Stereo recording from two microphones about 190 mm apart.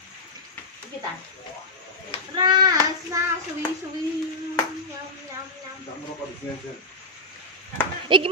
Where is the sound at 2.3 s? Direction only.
20° right (ahead or behind).